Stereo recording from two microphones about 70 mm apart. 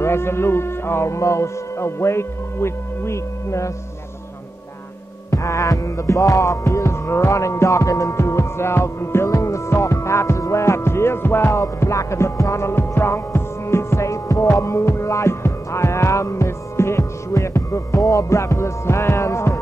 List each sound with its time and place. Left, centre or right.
0.0 s music: left
5.3 s music: left
11.6 s music: left